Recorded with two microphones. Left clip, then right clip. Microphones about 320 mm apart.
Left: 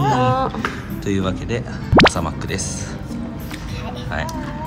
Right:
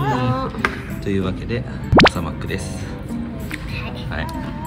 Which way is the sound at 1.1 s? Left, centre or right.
Centre.